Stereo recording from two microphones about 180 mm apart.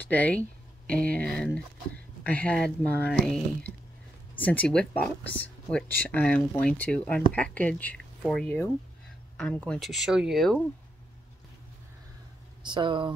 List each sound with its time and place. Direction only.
0.0 s speech: 10° left (ahead or behind)
4.4 s speech: 10° left (ahead or behind)
12.6 s speech: 25° right (ahead or behind)